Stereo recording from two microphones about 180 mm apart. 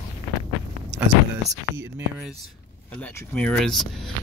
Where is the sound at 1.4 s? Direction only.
75° right (ahead or behind).